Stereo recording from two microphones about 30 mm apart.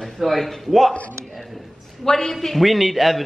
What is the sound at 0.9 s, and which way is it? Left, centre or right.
Speech, left.